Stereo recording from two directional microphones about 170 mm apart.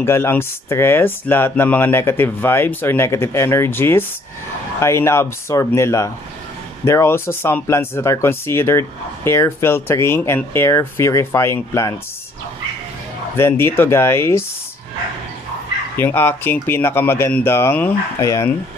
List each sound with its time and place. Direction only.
0.0 s speech: 15° left (ahead or behind)
13.4 s speech: 15° left (ahead or behind)
16.0 s speech: 15° left (ahead or behind)